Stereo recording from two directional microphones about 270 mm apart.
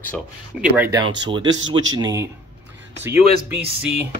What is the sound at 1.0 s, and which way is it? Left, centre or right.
Speech, centre.